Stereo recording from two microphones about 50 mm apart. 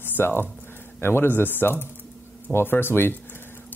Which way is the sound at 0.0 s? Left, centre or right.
Left.